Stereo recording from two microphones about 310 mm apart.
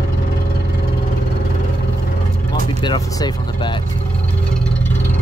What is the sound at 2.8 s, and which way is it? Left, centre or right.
Vehicle, centre.